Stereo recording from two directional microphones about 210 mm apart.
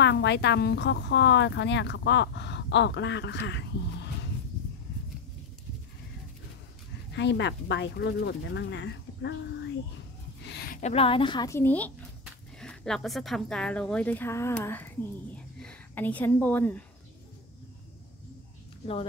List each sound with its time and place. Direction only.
0.0 s speech: 55° left (ahead or behind)
7.1 s speech: 55° left (ahead or behind)
10.7 s speech: 30° left (ahead or behind); by 16.8 s 10° left (ahead or behind)